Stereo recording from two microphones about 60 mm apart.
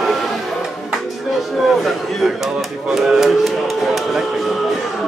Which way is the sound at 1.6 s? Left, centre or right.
Centre.